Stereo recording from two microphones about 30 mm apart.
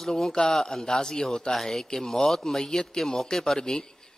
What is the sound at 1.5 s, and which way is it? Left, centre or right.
A man's voice, centre.